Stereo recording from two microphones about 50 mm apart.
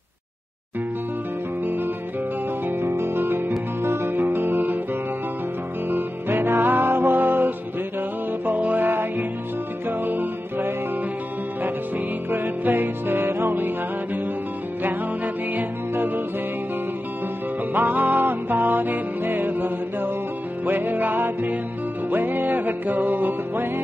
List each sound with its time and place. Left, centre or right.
2.8 s music: right
4.1 s music: right
5.9 s music: right
12.3 s music: right
17.7 s music: right